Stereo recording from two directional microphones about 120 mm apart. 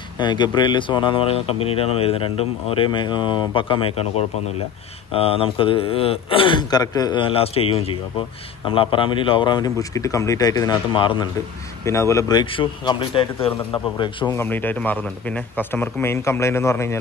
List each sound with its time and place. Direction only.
0.2 s speech: 40° left (ahead or behind)
11.8 s speech: 25° left (ahead or behind)
12.4 s speech: 40° left (ahead or behind)
14.3 s speech: 15° left (ahead or behind)